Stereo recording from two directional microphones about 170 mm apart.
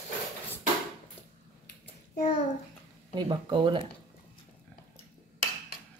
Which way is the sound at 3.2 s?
25° right (ahead or behind).